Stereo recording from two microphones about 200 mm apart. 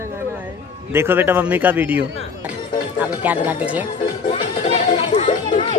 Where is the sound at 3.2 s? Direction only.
10° right (ahead or behind).